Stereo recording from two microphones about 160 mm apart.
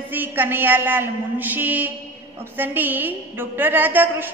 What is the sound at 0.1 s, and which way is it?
A woman's voice, 15° right (ahead or behind).